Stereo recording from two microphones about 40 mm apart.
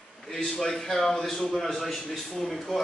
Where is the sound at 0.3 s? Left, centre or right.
Centre.